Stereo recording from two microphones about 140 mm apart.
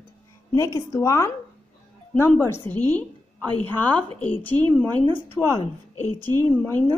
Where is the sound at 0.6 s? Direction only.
25° left (ahead or behind).